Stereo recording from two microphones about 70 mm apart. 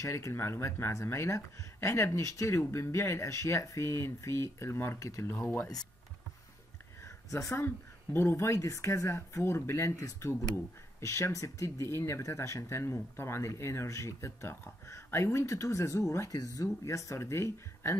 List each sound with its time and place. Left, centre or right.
0.0 s speech: left
7.1 s a sound: left
7.5 s speech: left
8.5 s speech: left
9.1 s speech: left
11.6 s speech: left